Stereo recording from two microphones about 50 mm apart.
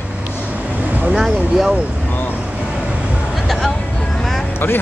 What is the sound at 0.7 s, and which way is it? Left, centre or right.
Vehicle, right.